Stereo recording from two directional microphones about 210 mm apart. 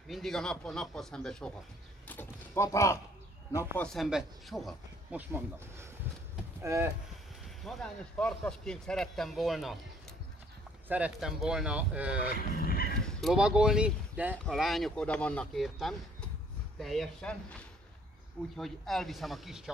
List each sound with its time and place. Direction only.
0.1 s speech: centre (ahead or behind)
2.0 s a sound: 10° left (ahead or behind)
3.5 s speech: 5° left (ahead or behind); by 6.9 s 15° right (ahead or behind)
7.6 s speech: centre (ahead or behind)
10.9 s speech: 5° right (ahead or behind)
12.5 s dog: 45° left (ahead or behind)
13.0 s speech: centre (ahead or behind)
18.6 s speech: centre (ahead or behind)